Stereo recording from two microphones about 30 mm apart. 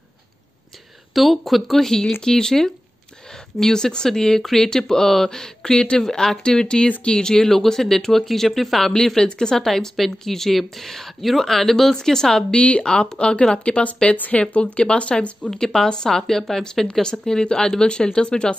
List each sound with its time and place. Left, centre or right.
1.1 s speech: centre
2.2 s speech: centre
3.7 s speech: left
4.4 s speech: centre
4.6 s speech: centre
5.9 s speech: centre
7.4 s speech: centre
8.9 s speech: centre
9.7 s speech: centre
12.5 s speech: left
13.2 s speech: left
14.4 s speech: left
15.5 s speech: centre; by 18.6 s left